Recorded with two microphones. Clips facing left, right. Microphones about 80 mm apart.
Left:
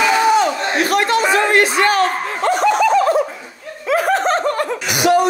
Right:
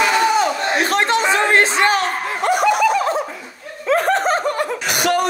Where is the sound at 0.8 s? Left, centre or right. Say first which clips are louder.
Left 3 dB; right.